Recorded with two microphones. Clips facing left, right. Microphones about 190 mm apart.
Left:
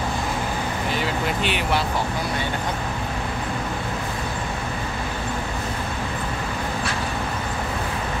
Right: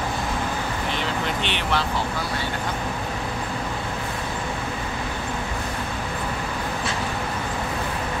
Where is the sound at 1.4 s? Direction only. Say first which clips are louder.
Left 3 dB; 5° left (ahead or behind).